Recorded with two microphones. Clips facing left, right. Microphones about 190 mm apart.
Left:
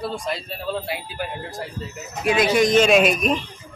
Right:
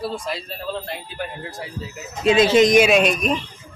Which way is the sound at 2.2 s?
25° right (ahead or behind).